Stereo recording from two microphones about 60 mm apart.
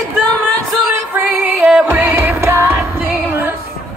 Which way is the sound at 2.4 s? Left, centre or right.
Right.